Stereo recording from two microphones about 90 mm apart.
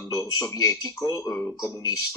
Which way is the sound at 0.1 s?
45° left (ahead or behind).